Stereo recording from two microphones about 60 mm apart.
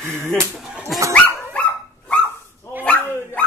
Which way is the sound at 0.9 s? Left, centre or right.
Centre.